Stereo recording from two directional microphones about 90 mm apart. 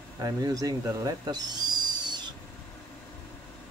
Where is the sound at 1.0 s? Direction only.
50° right (ahead or behind).